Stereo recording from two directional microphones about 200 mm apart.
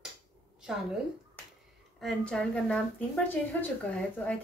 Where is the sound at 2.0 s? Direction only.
5° left (ahead or behind).